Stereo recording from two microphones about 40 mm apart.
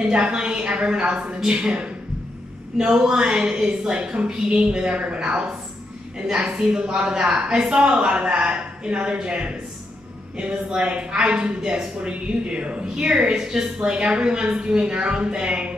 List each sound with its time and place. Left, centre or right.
0.0 s a woman's voice: right
2.8 s a woman's voice: centre
6.4 s a woman's voice: centre